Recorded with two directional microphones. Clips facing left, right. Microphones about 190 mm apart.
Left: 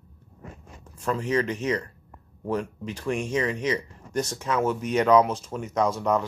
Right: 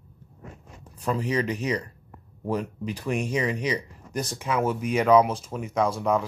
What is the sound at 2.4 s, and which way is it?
A man's voice, 10° right (ahead or behind).